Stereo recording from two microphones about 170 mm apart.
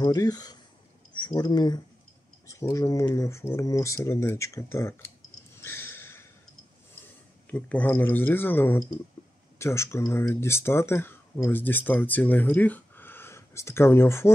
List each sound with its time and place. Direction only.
0.0 s speech: 20° left (ahead or behind)
5.6 s a sound: 15° left (ahead or behind)
7.4 s speech: 10° left (ahead or behind)